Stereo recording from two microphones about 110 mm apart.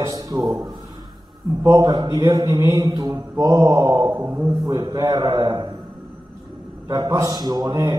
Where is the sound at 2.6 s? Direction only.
30° right (ahead or behind).